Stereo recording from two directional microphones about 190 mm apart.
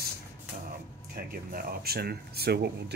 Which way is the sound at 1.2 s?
50° right (ahead or behind).